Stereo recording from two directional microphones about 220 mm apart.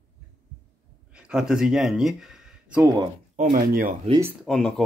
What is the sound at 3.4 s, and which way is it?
Speech, 35° right (ahead or behind).